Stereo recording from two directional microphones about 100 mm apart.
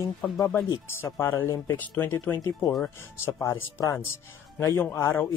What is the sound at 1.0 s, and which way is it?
Speech, 25° left (ahead or behind).